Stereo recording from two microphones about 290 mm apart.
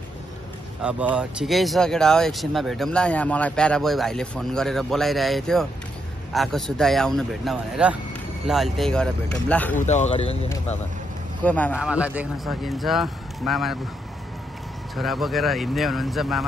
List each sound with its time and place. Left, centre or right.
0.8 s speech: centre
9.8 s speech: left
11.4 s speech: centre
15.0 s speech: centre